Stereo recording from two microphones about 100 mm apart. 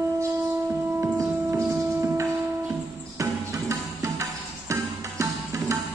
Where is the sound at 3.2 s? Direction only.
30° right (ahead or behind).